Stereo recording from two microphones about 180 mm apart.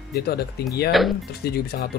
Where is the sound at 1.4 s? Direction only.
65° left (ahead or behind).